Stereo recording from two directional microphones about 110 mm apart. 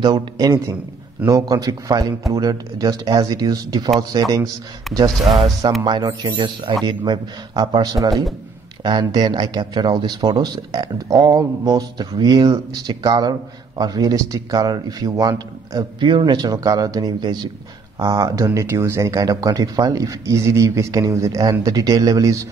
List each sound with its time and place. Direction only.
0.0 s speech: 40° right (ahead or behind)
4.9 s a man's voice: centre (ahead or behind)
5.6 s speech: 40° right (ahead or behind)
16.0 s speech: 50° right (ahead or behind); by 22.5 s 30° right (ahead or behind)